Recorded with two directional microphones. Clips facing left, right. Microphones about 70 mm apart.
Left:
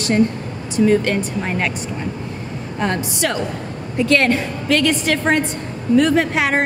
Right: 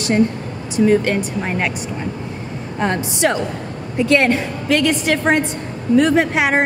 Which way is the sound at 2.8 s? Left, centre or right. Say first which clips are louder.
Right 3 dB; right.